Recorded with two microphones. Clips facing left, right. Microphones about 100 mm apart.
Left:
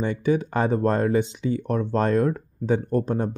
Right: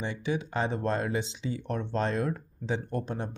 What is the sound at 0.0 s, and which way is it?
Speech, 50° left (ahead or behind).